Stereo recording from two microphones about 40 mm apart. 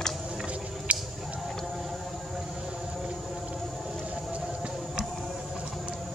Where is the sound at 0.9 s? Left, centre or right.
Right.